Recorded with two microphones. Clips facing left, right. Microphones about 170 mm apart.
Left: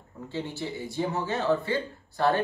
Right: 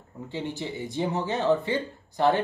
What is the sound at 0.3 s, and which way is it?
Speech, 15° right (ahead or behind).